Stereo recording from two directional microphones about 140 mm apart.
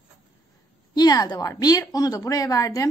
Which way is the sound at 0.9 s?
30° left (ahead or behind).